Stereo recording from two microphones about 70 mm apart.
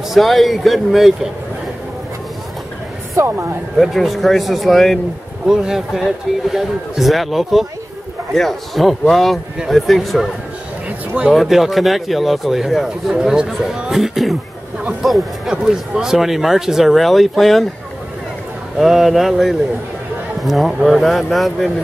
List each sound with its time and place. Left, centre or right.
0.1 s speech: centre
3.2 s speech: right
3.7 s speech: centre
5.5 s speech: centre
10.9 s a sound: centre
11.3 s speech: centre
15.0 s music: centre
15.5 s speech: centre
18.8 s speech: centre